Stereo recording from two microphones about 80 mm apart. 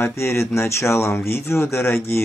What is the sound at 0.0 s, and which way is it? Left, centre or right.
Speech, left.